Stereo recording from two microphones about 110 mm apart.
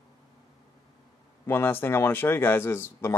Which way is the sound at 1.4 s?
20° left (ahead or behind).